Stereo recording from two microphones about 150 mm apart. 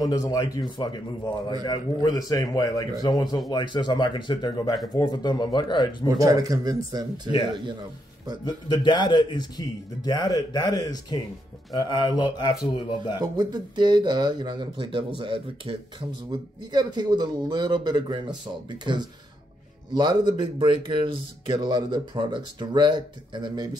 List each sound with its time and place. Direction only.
0.0 s speech: 25° left (ahead or behind)
6.0 s speech: 25° right (ahead or behind)
8.8 s speech: 30° left (ahead or behind)
13.2 s speech: 25° right (ahead or behind)